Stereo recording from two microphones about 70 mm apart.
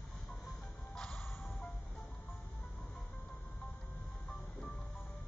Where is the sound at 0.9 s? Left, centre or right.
Centre.